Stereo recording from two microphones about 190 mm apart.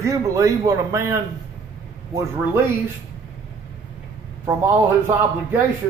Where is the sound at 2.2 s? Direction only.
15° right (ahead or behind).